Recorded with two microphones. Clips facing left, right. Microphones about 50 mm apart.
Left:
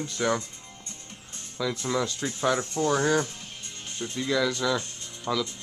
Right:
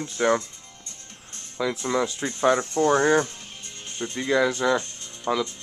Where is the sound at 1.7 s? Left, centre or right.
Centre.